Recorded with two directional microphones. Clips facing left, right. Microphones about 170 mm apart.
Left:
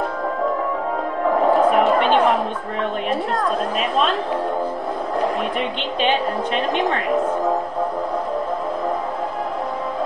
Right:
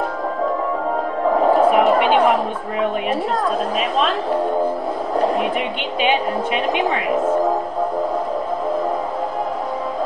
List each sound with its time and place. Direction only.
1.5 s a sound: 5° right (ahead or behind)
2.8 s a woman's voice: 5° right (ahead or behind)
5.4 s speech: 5° right (ahead or behind)